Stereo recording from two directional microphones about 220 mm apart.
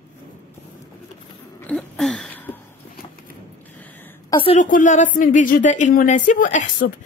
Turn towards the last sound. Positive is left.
turn(degrees=35)  # may be behind; listen again after turning